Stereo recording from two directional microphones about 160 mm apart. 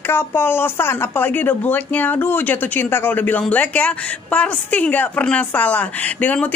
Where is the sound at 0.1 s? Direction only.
15° left (ahead or behind).